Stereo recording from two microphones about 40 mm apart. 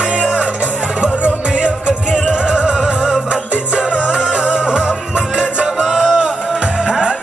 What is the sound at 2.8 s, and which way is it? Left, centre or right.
Music, centre.